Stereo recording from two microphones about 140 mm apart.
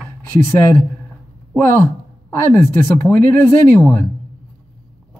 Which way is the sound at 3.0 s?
15° left (ahead or behind).